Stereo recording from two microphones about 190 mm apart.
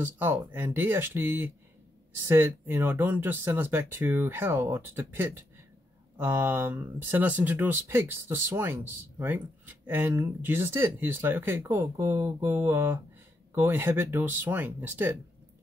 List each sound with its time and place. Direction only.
0.0 s speech: 10° right (ahead or behind)